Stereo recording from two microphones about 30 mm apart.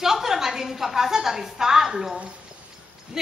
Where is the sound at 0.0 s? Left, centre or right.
Centre.